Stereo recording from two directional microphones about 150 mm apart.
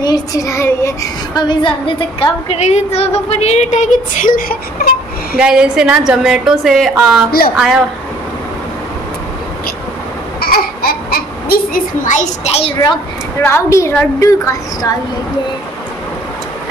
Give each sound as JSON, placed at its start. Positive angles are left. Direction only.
{"t": 0.0, "sound": "speech", "side_deg": 25}
{"t": 2.5, "sound": "speech", "side_deg": 45}
{"t": 5.4, "sound": "a woman's voice", "side_deg": -5}
{"t": 7.2, "sound": "a woman's voice", "side_deg": 80}
{"t": 7.5, "sound": "a woman's voice", "side_deg": -5}
{"t": 10.4, "sound": "a sound", "side_deg": 90}
{"t": 12.9, "sound": "a woman's voice", "side_deg": 15}